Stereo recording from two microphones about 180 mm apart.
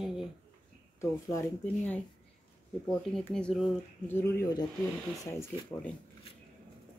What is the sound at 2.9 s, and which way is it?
Speech, 5° left (ahead or behind).